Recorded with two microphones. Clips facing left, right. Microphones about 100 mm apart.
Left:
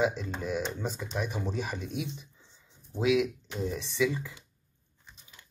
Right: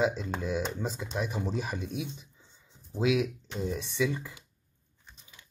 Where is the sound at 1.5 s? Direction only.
30° right (ahead or behind).